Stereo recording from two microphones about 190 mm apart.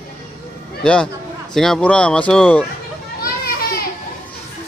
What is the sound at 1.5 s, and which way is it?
Speech, centre (ahead or behind).